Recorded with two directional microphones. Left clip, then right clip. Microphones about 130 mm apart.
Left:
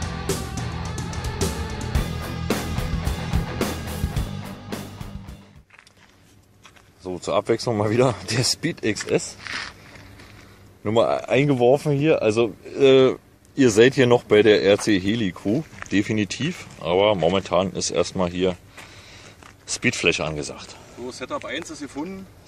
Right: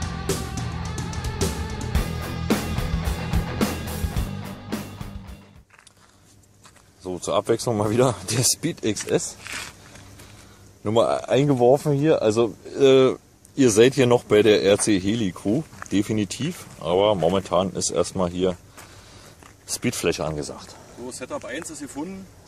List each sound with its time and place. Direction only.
0.0 s music: centre (ahead or behind)
7.0 s speech: 5° right (ahead or behind)
10.8 s speech: 5° right (ahead or behind)
19.6 s speech: 10° right (ahead or behind)
21.5 s speech: 35° right (ahead or behind)